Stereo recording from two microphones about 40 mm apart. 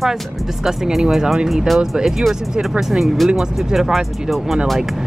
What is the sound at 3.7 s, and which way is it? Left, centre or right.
Speech, centre.